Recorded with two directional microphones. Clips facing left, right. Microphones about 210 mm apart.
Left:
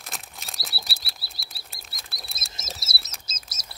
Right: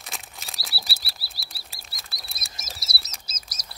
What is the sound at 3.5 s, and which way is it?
Bird, 25° left (ahead or behind).